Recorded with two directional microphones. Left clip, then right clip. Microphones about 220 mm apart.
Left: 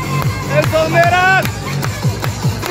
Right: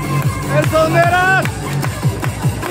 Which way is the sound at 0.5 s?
10° right (ahead or behind).